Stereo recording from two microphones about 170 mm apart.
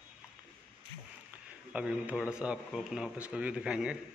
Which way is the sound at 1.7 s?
5° right (ahead or behind).